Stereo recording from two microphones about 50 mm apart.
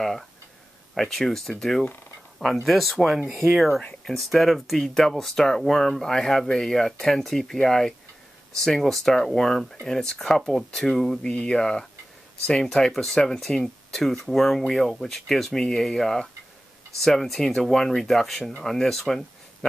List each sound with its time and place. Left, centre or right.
0.9 s speech: centre
2.4 s speech: centre